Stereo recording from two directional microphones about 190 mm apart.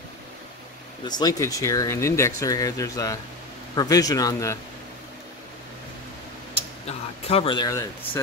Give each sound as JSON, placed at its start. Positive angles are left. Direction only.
{"t": 1.0, "sound": "speech", "side_deg": 20}
{"t": 6.9, "sound": "speech", "side_deg": 30}